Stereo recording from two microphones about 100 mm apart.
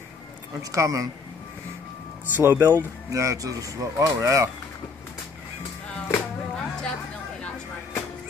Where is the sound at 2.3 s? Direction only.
25° right (ahead or behind).